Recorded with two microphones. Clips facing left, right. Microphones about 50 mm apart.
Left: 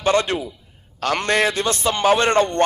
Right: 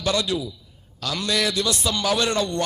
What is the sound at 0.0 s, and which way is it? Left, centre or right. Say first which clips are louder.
A man's voice: left 5 dB; left.